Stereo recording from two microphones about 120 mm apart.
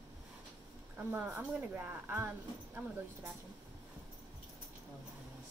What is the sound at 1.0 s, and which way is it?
Speech, 15° right (ahead or behind).